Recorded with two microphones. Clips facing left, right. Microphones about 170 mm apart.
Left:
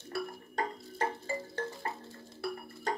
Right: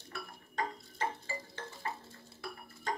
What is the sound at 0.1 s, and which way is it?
Music, 40° left (ahead or behind).